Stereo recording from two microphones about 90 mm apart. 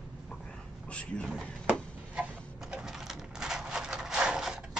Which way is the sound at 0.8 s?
10° left (ahead or behind).